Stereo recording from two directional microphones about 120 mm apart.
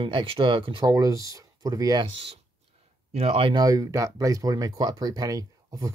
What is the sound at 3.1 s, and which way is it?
Speech, 55° right (ahead or behind).